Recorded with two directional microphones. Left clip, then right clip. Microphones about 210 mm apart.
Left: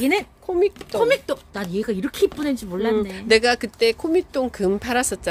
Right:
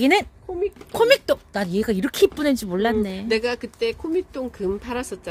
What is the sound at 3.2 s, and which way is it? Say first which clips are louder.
Speech: left 9 dB; 40° left (ahead or behind).